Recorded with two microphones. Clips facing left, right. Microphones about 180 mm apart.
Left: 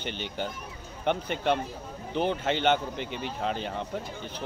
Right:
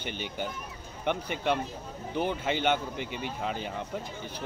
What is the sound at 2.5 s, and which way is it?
Speech, 10° right (ahead or behind).